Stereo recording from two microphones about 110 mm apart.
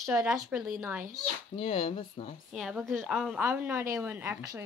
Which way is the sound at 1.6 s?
55° left (ahead or behind).